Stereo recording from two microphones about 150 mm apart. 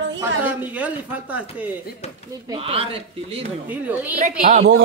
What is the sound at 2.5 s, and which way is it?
Speech, 40° right (ahead or behind).